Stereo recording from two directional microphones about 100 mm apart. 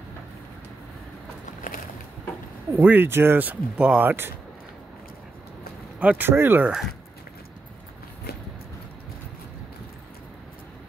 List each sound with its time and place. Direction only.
2.8 s speech: 20° right (ahead or behind)
5.9 s speech: 15° right (ahead or behind)